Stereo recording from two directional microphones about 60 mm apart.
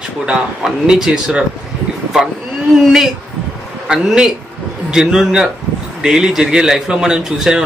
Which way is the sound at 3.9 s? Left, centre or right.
Centre.